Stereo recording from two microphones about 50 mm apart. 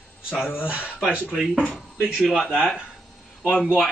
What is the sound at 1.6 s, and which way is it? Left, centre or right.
Speech, left.